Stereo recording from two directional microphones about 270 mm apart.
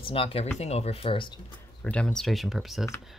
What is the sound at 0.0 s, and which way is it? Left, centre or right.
Speech, left.